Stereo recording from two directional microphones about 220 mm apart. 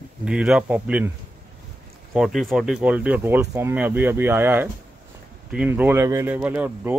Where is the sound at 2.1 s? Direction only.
Centre (ahead or behind).